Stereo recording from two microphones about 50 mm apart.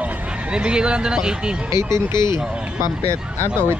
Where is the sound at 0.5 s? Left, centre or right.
Centre.